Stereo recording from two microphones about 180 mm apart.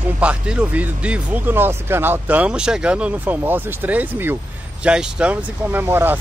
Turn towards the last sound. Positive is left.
turn(degrees=-10)  # may be behind; listen again after turning